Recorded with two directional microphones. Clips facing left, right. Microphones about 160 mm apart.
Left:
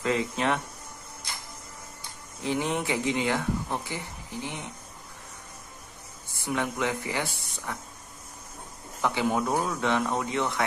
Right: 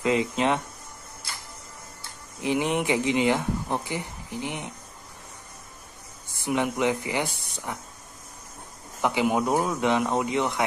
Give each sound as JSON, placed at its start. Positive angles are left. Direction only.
{"t": 0.0, "sound": "speech", "side_deg": -20}
{"t": 2.4, "sound": "speech", "side_deg": -15}
{"t": 6.4, "sound": "speech", "side_deg": -15}
{"t": 9.0, "sound": "speech", "side_deg": -15}